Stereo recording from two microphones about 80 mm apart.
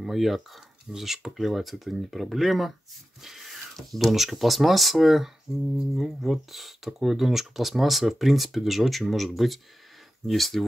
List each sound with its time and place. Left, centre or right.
0.0 s speech: centre